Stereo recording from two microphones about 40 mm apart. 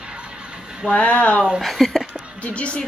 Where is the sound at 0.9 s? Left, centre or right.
Left.